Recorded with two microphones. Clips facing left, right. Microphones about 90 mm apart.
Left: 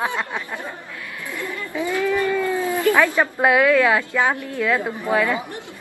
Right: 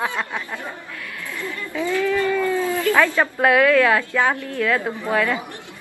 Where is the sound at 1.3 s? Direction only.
15° left (ahead or behind).